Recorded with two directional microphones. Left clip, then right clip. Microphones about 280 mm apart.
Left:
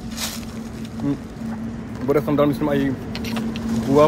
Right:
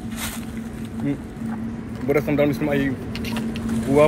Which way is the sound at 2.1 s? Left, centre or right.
Centre.